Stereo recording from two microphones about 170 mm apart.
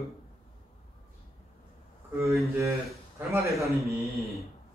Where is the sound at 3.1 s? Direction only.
20° right (ahead or behind).